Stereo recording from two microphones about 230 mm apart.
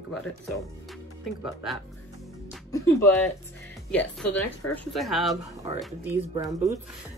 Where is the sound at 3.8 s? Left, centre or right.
Centre.